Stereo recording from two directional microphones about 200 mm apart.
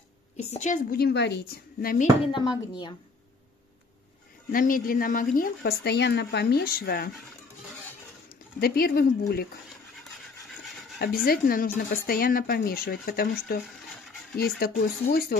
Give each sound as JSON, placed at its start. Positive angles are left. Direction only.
{"t": 0.4, "sound": "speech", "side_deg": 35}
{"t": 4.5, "sound": "speech", "side_deg": 45}
{"t": 5.6, "sound": "speech", "side_deg": 55}
{"t": 8.5, "sound": "speech", "side_deg": 50}
{"t": 11.2, "sound": "speech", "side_deg": 45}